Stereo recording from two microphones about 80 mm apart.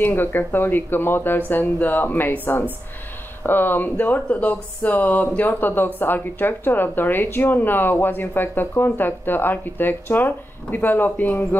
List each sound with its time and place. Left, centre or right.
0.0 s speech: left